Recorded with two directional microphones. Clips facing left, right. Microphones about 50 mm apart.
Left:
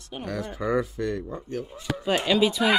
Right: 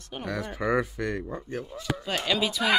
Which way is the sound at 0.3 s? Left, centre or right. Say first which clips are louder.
Even; right.